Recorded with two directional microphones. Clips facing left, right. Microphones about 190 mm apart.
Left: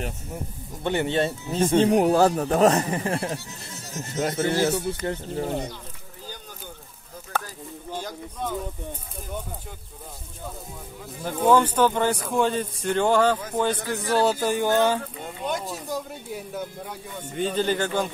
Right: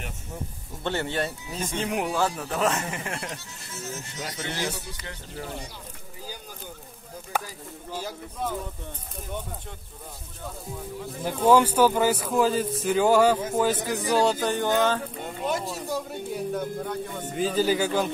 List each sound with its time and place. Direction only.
0.8 s speech: 20° left (ahead or behind); by 5.6 s 40° left (ahead or behind)
7.3 s a sound: 15° right (ahead or behind)
7.9 s speech: 5° right (ahead or behind)
11.4 s speech: 10° right (ahead or behind); by 15.0 s 10° left (ahead or behind)
15.2 s speech: centre (ahead or behind)